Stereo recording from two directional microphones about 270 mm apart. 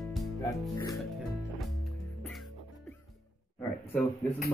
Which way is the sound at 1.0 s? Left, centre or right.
Centre.